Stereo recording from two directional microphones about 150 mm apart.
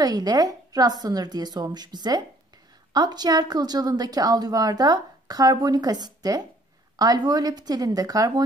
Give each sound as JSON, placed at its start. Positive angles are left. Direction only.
{"t": 0.0, "sound": "a woman's voice", "side_deg": -25}